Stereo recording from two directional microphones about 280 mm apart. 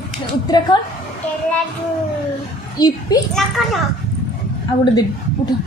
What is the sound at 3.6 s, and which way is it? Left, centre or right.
Speech, centre.